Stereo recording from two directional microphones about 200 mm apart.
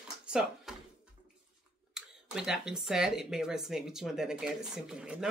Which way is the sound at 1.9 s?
5° right (ahead or behind).